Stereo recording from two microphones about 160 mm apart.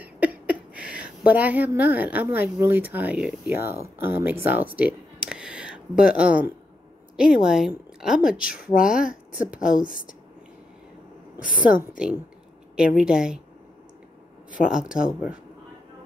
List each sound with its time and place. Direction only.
0.0 s a woman's voice: 10° right (ahead or behind)
11.3 s a woman's voice: 60° left (ahead or behind)
12.7 s a woman's voice: 5° right (ahead or behind)
14.7 s a woman's voice: 5° right (ahead or behind)